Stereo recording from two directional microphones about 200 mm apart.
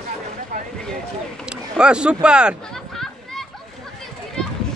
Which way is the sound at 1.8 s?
5° right (ahead or behind).